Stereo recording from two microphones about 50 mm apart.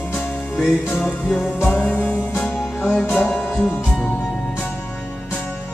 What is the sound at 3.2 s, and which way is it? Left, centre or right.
Music, centre.